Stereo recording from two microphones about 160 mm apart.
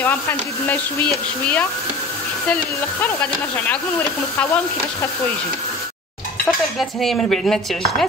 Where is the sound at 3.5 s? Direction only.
15° left (ahead or behind).